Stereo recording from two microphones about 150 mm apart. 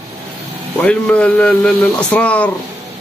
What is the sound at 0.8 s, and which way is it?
A man's voice, 5° left (ahead or behind).